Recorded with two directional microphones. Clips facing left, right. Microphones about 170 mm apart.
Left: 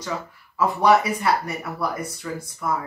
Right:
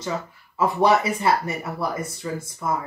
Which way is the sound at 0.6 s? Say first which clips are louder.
Left 1 dB; 25° right (ahead or behind).